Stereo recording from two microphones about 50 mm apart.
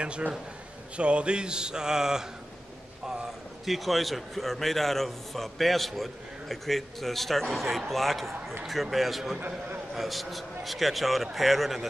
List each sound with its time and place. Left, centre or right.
0.9 s a man's voice: right; by 11.9 s centre